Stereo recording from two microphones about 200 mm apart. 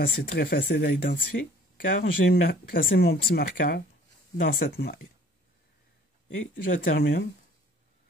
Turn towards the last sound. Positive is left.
turn(degrees=45)  # may be behind; listen again after turning